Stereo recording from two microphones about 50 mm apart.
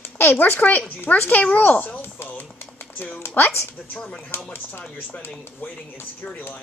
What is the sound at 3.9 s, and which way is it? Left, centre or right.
Speech, left.